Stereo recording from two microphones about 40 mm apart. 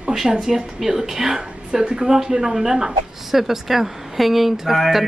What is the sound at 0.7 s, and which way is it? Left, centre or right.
A woman's voice, centre.